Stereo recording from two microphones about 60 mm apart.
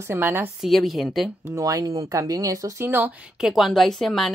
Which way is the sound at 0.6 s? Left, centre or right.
Centre.